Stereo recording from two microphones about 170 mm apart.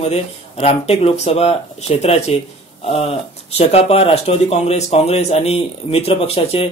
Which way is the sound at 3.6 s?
35° left (ahead or behind).